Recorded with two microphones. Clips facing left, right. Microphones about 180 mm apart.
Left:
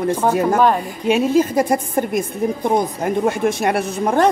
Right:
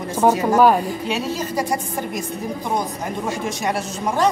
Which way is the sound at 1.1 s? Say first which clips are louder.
Left 14 dB; 55° left (ahead or behind).